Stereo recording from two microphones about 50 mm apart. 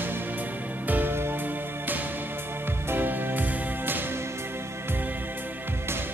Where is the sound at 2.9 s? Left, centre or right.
Right.